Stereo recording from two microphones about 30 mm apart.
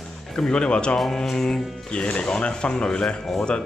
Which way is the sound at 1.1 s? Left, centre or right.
Centre.